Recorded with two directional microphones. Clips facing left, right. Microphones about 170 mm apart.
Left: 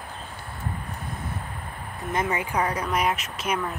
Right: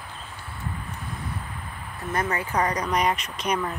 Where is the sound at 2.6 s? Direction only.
5° left (ahead or behind).